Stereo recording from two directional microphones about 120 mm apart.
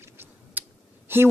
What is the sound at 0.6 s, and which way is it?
Clicking, 15° right (ahead or behind).